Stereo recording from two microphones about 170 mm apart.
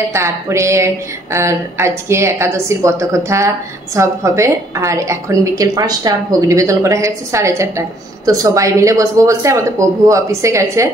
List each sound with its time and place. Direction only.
0.1 s a woman's voice: 15° right (ahead or behind)